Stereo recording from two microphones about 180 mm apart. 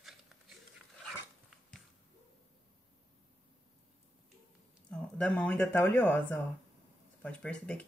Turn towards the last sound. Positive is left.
turn(degrees=5)  # may be behind; listen again after turning